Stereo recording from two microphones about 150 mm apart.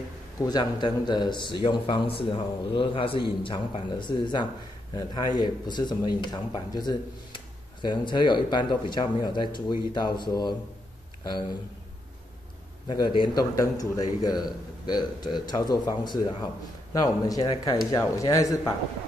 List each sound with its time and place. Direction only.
0.4 s speech: 25° left (ahead or behind)
12.8 s speech: 30° left (ahead or behind)